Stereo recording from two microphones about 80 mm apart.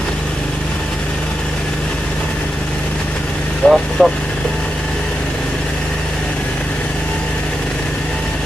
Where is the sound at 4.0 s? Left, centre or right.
Centre.